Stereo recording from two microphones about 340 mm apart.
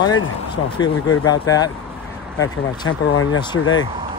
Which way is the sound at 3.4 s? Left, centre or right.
Centre.